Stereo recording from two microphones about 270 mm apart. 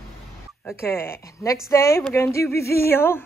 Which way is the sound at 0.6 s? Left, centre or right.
Centre.